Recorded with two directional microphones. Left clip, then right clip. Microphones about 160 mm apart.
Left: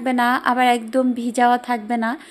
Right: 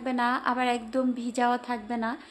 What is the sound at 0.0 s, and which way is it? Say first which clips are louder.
A woman's voice: left 8 dB; 25° left (ahead or behind).